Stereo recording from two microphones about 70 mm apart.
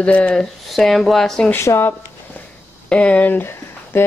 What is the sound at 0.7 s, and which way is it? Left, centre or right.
Speech, centre.